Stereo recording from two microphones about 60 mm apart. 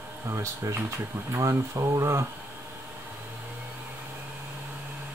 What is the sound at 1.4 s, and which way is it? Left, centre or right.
Speech, right.